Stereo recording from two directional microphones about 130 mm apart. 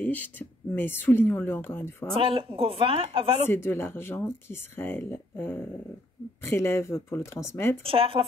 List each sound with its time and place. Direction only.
0.0 s speech: 15° left (ahead or behind)
2.1 s speech: 45° right (ahead or behind)
3.4 s speech: 15° left (ahead or behind)
7.8 s speech: 45° right (ahead or behind)